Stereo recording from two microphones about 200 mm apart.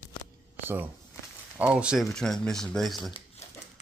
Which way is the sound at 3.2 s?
35° left (ahead or behind).